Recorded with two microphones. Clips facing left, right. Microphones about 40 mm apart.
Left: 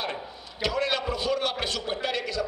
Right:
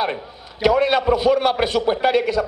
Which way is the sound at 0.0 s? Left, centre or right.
Right.